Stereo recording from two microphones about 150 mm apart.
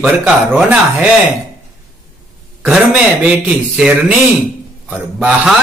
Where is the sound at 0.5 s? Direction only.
10° right (ahead or behind).